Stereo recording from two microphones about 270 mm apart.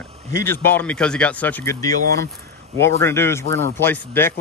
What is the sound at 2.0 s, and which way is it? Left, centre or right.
Speech, right.